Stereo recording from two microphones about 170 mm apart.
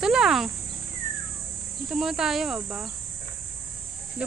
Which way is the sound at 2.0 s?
Centre (ahead or behind).